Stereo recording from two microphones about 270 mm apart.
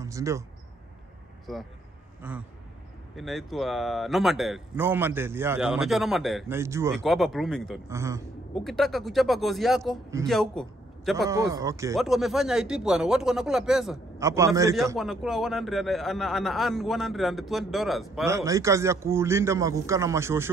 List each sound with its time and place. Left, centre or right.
0.0 s a sound: centre
2.2 s a man's voice: centre
7.0 s a man's voice: centre
7.9 s a man's voice: centre
8.5 s a man's voice: centre
11.5 s a man's voice: centre
12.0 s a man's voice: centre
14.1 s a man's voice: centre
15.0 s a man's voice: centre
18.3 s a man's voice: centre